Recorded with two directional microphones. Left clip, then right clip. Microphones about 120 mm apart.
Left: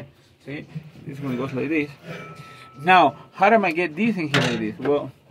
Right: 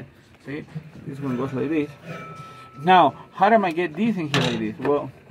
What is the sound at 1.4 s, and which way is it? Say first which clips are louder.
Speech: left 1 dB; 15° right (ahead or behind).